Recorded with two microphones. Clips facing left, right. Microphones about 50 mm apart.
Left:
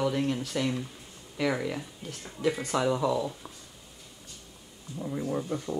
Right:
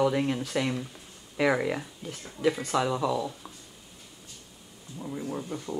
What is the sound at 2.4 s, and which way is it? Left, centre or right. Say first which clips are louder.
Speech: right 2 dB; centre.